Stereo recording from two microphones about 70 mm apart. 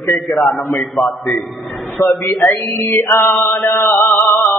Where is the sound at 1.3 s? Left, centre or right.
Centre.